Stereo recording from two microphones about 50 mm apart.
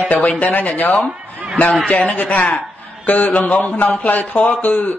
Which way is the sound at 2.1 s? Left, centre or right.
Left.